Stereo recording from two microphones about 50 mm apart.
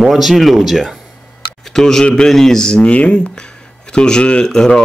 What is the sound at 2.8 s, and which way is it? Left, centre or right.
Speech, left.